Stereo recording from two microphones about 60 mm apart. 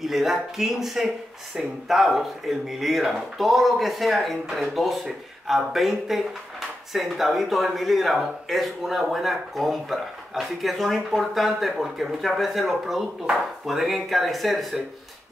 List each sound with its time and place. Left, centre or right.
0.0 s speech: centre